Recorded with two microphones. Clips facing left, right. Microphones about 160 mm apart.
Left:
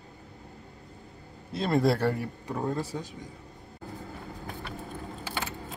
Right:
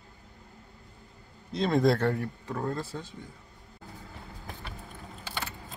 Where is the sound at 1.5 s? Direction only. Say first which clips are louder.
Right 1 dB; 5° left (ahead or behind).